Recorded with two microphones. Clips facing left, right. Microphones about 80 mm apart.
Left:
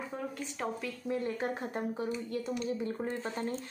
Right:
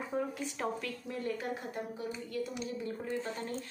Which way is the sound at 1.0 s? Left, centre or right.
Left.